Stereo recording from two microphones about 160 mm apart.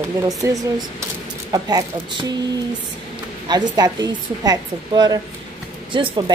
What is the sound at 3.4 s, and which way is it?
A woman's voice, 25° right (ahead or behind).